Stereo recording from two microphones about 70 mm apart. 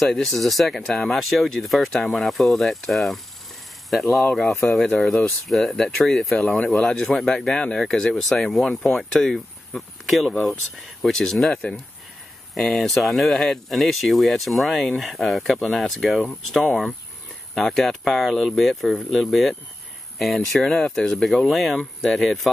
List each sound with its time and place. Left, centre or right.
0.1 s speech: centre
4.6 s speech: centre
11.5 s speech: centre
12.5 s speech: centre